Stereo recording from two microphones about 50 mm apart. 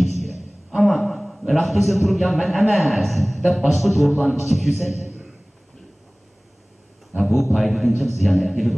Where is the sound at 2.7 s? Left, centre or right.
Centre.